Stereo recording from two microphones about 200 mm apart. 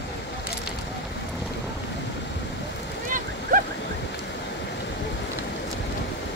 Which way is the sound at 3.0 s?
40° right (ahead or behind).